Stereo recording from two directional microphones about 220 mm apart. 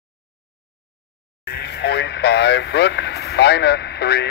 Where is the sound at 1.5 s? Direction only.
45° left (ahead or behind).